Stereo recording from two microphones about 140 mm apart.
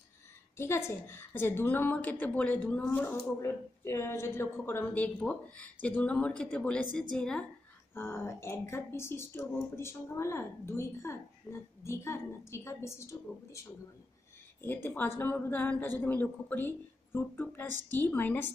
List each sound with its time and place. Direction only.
0.6 s speech: 20° left (ahead or behind)
7.9 s speech: 15° left (ahead or behind)
11.5 s speech: 5° left (ahead or behind)
11.8 s speech: 20° left (ahead or behind)
14.6 s speech: 15° left (ahead or behind)